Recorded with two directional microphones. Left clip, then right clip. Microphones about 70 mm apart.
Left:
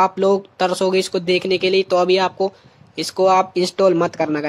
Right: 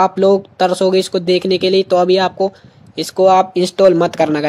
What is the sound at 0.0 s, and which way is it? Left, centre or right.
Speech, right.